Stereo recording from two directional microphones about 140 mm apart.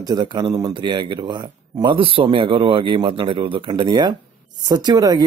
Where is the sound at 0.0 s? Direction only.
30° right (ahead or behind).